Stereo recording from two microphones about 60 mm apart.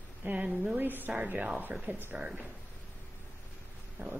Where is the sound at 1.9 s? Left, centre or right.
Right.